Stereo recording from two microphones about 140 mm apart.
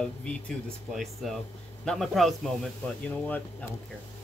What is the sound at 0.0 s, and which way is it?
Speech, 5° left (ahead or behind).